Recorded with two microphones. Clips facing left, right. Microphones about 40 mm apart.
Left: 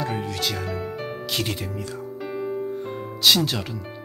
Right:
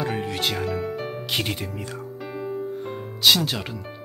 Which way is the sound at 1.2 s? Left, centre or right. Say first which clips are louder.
Even; right.